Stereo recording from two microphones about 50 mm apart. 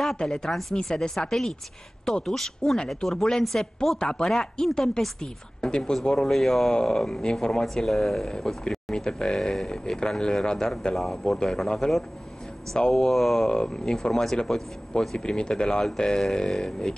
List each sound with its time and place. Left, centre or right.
0.2 s speech: centre
0.5 s speech: centre
6.7 s speech: centre
8.3 s speech: centre
11.0 s speech: centre
13.5 s speech: centre